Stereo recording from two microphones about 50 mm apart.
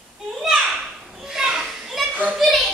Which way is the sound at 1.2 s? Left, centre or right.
Centre.